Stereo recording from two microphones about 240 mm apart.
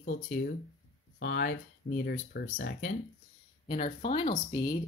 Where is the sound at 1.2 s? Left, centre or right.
Left.